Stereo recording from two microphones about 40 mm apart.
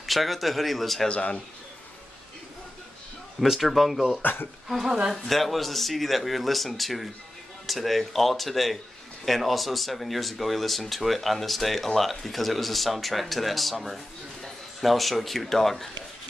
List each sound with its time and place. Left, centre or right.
0.0 s speech: centre
1.0 s speech: left
3.3 s speech: centre
4.2 s speech: left
4.6 s a man's voice: centre